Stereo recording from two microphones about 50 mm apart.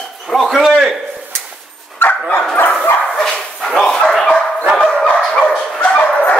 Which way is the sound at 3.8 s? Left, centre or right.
Centre.